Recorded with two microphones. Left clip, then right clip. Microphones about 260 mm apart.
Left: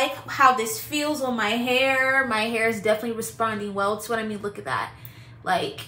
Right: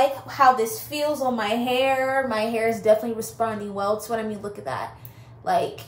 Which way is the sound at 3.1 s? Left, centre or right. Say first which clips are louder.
Even; centre.